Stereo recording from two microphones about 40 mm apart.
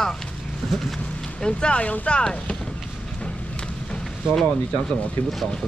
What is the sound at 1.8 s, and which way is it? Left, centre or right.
Speech, left.